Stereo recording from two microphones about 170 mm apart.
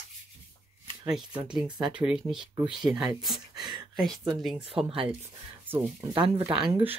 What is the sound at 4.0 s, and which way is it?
Speech, centre (ahead or behind).